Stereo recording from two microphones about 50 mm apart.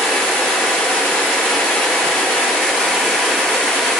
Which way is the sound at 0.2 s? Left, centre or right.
Centre.